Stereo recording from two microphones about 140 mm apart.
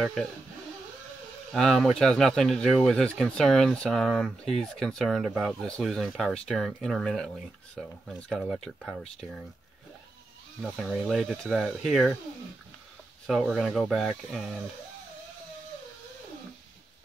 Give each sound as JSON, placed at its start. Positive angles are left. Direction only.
{"t": 1.5, "sound": "speech", "side_deg": 0}
{"t": 10.6, "sound": "speech", "side_deg": 0}
{"t": 13.3, "sound": "speech", "side_deg": 0}